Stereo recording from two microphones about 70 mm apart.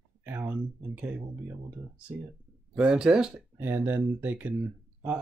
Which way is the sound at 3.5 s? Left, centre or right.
Right.